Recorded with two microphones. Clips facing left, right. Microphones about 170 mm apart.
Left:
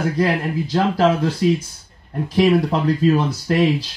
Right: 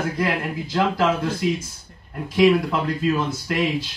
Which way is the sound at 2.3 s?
35° left (ahead or behind).